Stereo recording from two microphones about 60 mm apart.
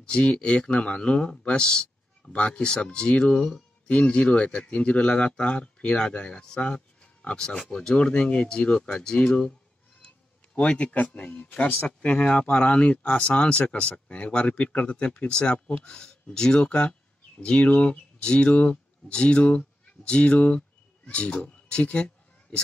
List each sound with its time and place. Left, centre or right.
0.0 s speech: centre